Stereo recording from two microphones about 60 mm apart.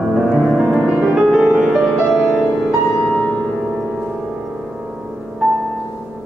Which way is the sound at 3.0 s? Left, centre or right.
Centre.